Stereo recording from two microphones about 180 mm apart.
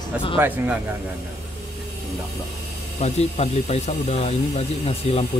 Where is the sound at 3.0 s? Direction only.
35° left (ahead or behind).